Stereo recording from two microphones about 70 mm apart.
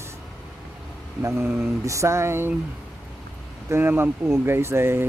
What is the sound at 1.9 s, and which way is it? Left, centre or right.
Speech, right.